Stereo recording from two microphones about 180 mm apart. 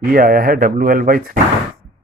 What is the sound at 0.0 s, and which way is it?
Speech, 55° right (ahead or behind).